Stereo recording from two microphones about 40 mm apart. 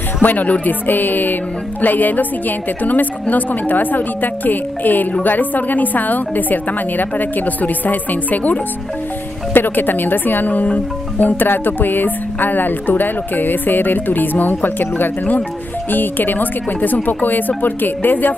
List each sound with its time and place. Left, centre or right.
0.2 s speech: left
11.4 s speech: left